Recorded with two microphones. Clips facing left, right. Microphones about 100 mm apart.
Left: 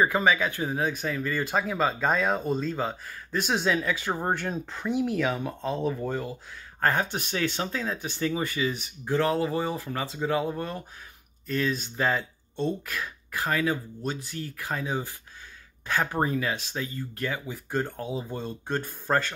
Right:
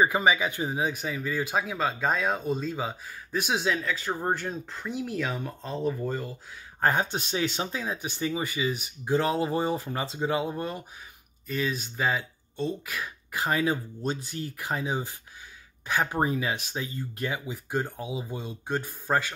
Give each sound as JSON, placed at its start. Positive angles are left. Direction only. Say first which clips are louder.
{"t": 0.0, "sound": "speech", "louder": "even", "side_deg": -10}
{"t": 6.8, "sound": "speech", "louder": "even", "side_deg": -20}